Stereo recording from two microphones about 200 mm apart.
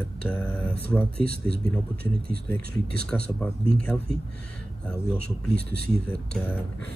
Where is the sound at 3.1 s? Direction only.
5° left (ahead or behind).